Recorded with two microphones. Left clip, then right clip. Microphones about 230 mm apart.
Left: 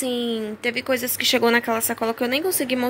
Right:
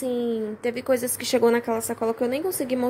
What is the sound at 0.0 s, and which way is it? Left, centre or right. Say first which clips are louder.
A woman's voice: left 1 dB; centre.